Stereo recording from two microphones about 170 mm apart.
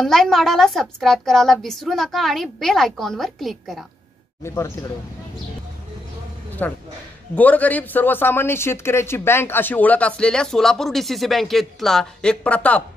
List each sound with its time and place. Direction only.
0.0 s a woman's voice: centre (ahead or behind)
4.4 s a man's voice: 15° left (ahead or behind)
6.6 s a man's voice: 10° left (ahead or behind)